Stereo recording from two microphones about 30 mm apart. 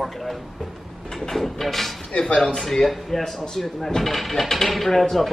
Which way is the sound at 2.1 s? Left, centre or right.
Left.